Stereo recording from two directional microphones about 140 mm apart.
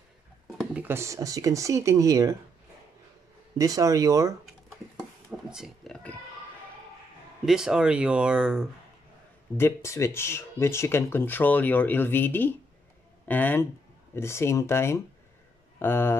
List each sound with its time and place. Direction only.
0.7 s speech: 15° right (ahead or behind)
3.5 s speech: 25° right (ahead or behind)
5.5 s speech: 5° right (ahead or behind)
7.4 s speech: 5° right (ahead or behind)
9.6 s speech: 20° left (ahead or behind)